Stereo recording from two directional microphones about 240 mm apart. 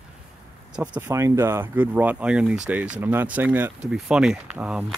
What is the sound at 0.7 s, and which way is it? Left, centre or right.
Speech, centre.